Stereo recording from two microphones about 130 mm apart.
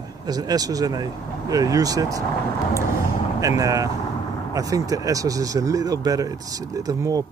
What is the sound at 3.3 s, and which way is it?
Speech, 25° right (ahead or behind).